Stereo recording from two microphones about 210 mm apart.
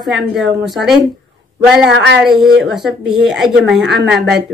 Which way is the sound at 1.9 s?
55° right (ahead or behind).